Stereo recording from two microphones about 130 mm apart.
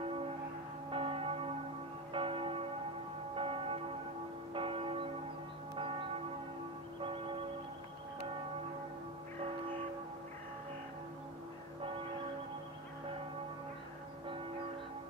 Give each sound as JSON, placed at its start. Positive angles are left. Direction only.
{"t": 0.8, "sound": "church bell", "side_deg": -40}